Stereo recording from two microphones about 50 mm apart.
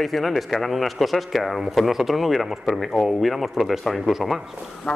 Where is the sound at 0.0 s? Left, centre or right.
Centre.